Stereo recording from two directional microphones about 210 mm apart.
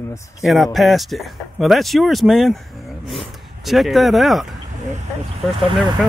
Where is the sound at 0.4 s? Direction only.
Centre (ahead or behind).